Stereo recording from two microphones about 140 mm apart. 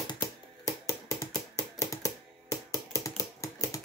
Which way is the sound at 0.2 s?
20° left (ahead or behind).